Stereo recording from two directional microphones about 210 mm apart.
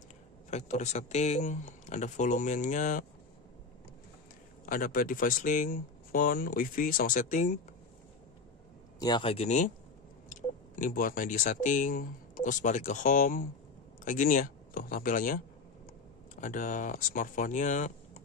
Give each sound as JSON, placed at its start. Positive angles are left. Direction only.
{"t": 0.5, "sound": "speech", "side_deg": 35}
{"t": 4.6, "sound": "speech", "side_deg": 40}
{"t": 9.0, "sound": "speech", "side_deg": 25}